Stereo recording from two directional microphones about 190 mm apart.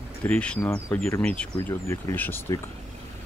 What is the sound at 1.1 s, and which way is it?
Speech, 5° left (ahead or behind).